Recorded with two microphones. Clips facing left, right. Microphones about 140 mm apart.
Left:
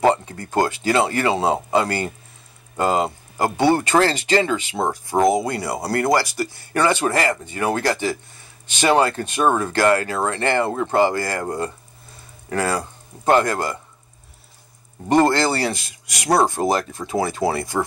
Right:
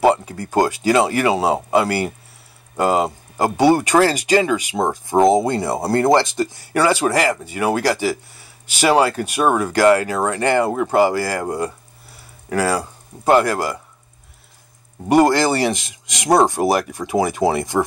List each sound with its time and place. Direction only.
0.0 s speech: 10° right (ahead or behind)
15.0 s speech: 10° right (ahead or behind)